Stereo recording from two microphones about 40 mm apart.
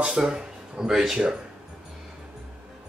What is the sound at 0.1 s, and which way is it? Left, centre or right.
Speech, centre.